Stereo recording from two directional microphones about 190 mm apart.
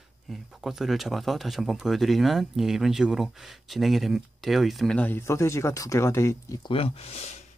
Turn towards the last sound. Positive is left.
turn(degrees=35)  # may be behind; listen again after turning